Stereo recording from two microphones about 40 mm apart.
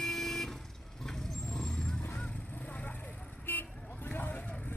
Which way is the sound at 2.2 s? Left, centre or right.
Left.